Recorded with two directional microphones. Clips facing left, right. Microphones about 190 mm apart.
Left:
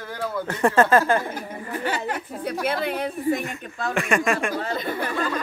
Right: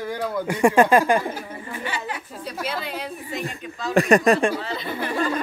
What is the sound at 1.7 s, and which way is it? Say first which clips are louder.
A woman's voice: left 5 dB; 45° left (ahead or behind).